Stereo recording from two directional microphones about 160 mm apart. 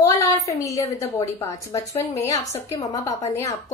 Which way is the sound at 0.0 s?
20° left (ahead or behind).